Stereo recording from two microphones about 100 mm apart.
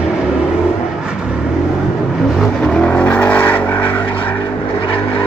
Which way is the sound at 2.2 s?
5° right (ahead or behind).